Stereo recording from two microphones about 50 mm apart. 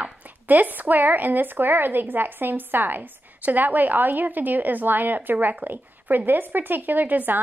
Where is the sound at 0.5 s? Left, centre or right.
Right.